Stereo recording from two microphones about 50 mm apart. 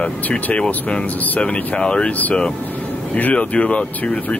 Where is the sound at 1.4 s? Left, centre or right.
Left.